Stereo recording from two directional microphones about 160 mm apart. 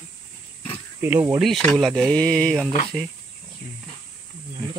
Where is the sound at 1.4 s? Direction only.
Centre (ahead or behind).